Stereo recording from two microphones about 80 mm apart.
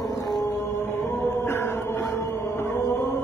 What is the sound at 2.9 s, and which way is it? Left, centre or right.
Music, left.